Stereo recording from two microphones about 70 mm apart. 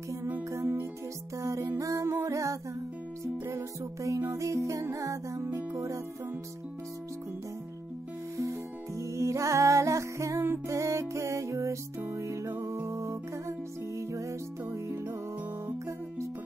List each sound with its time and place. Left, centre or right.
0.5 s music: right
5.4 s music: right
8.4 s music: right